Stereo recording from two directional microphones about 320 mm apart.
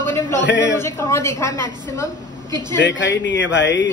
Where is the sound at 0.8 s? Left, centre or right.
Centre.